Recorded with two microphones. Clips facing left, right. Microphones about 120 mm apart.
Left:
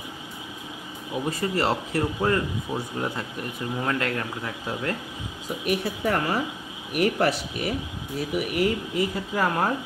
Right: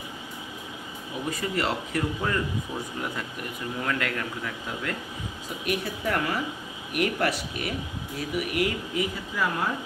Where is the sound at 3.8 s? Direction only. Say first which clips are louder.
Left 2 dB; 30° left (ahead or behind).